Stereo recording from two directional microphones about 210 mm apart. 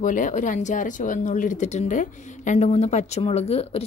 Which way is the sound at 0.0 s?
35° left (ahead or behind).